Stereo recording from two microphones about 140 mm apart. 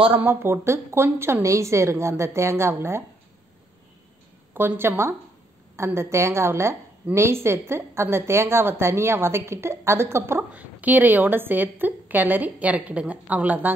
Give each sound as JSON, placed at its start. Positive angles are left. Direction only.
{"t": 0.1, "sound": "a woman's voice", "side_deg": -15}
{"t": 4.6, "sound": "a woman's voice", "side_deg": -15}